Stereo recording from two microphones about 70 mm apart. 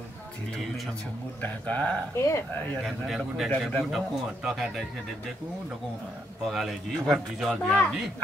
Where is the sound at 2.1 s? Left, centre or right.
Left.